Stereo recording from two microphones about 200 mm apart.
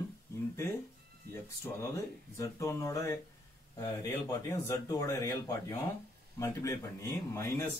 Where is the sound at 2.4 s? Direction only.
15° left (ahead or behind).